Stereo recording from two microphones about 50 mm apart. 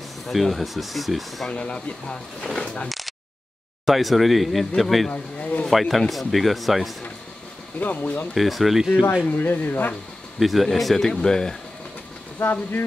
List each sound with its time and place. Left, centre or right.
0.3 s speech: centre
1.5 s speech: left
2.4 s a sound: centre
3.8 s speech: centre
5.1 s a sound: left
5.7 s speech: centre
7.8 s speech: left
8.4 s speech: centre
9.4 s speech: left
10.4 s speech: centre
11.1 s speech: centre
12.4 s speech: left